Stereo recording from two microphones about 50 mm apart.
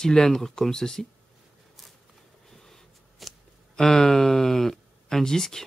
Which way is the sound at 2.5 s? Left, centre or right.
Centre.